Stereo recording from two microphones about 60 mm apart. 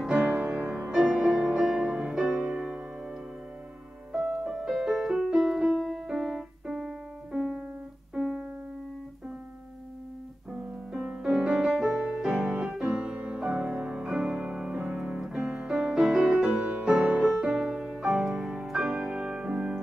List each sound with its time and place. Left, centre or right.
0.0 s music: centre
4.1 s music: centre
6.0 s keyboard: centre
11.2 s music: centre
17.2 s piano: centre